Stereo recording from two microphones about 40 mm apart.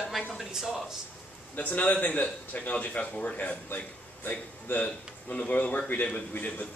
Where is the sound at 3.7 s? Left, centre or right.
Left.